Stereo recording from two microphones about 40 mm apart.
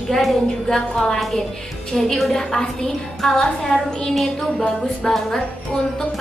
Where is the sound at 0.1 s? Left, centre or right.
Centre.